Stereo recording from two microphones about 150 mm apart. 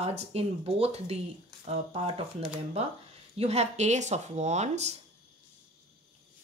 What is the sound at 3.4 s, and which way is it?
Speech, 45° right (ahead or behind).